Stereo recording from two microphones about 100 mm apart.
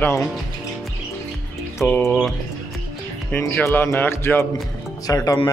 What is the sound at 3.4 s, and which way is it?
Speech, 25° left (ahead or behind).